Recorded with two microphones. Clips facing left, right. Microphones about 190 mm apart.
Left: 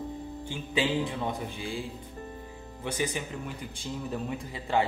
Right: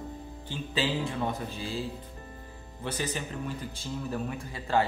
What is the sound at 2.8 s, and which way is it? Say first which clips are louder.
A man's voice: left 2 dB; 15° left (ahead or behind).